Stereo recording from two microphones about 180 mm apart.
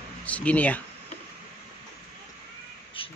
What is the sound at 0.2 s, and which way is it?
Speech, 10° left (ahead or behind).